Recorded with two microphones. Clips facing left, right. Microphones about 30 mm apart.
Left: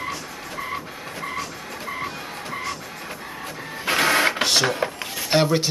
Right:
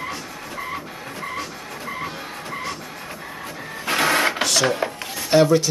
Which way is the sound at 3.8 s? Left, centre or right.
Centre.